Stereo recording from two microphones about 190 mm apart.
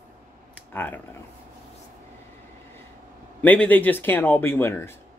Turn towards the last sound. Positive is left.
turn(degrees=15)  # may be behind; listen again after turning